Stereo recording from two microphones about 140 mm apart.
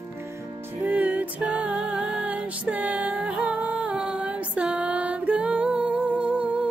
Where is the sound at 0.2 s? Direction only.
20° right (ahead or behind).